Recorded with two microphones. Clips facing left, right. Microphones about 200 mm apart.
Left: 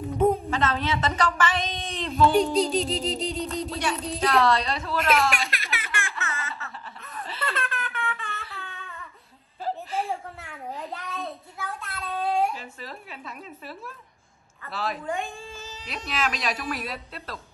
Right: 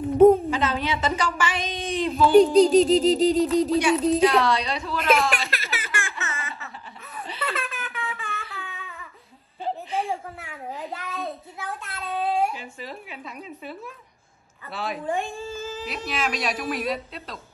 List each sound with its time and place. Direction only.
0.2 s a woman's voice: centre (ahead or behind)
6.3 s baby laughter: centre (ahead or behind)
7.2 s laughter: centre (ahead or behind)
9.7 s a sound: centre (ahead or behind)
11.6 s child singing: centre (ahead or behind)
14.7 s a woman's voice: centre (ahead or behind)
15.6 s speech: 50° right (ahead or behind)
15.9 s a woman's voice: centre (ahead or behind)